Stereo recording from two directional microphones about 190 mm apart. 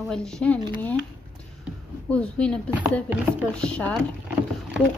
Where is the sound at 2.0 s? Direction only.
5° left (ahead or behind).